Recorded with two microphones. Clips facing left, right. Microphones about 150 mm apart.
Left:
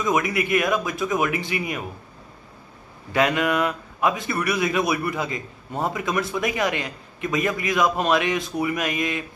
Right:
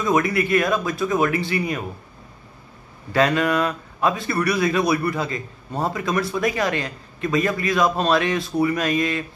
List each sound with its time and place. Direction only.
0.0 s speech: 15° left (ahead or behind)
3.1 s speech: 15° left (ahead or behind)